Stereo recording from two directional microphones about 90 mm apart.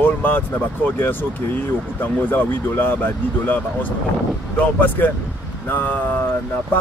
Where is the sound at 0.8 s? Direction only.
25° left (ahead or behind).